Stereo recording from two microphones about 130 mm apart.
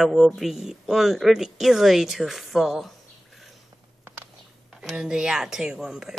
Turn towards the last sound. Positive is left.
turn(degrees=-5)  # may be behind; listen again after turning